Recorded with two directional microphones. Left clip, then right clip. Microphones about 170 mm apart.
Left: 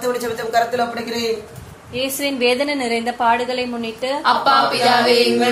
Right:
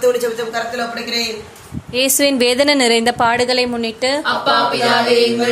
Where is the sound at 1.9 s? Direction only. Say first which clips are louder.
Right 7 dB; 45° right (ahead or behind).